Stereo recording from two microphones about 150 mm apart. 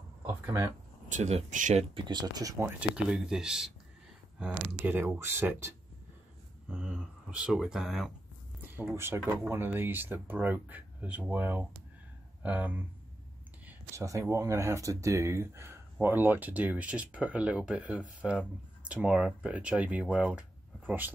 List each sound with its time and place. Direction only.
0.3 s speech: 15° right (ahead or behind)
1.0 s speech: 50° right (ahead or behind)
2.0 s speech: 30° right (ahead or behind)
3.1 s speech: 5° right (ahead or behind)
8.9 s speech: 15° right (ahead or behind)